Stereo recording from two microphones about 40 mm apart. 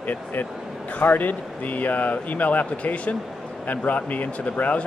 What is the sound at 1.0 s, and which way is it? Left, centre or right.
Speech, left.